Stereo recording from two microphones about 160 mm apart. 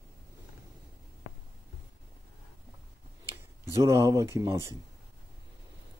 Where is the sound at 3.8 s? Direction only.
20° right (ahead or behind).